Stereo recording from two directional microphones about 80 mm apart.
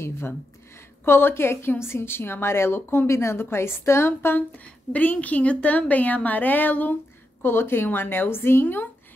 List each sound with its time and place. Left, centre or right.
0.7 s a woman's voice: left
4.9 s a woman's voice: centre